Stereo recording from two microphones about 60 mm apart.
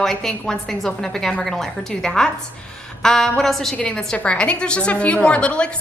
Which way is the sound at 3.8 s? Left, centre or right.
Centre.